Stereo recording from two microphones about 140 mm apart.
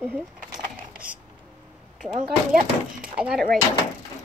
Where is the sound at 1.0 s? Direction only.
10° right (ahead or behind).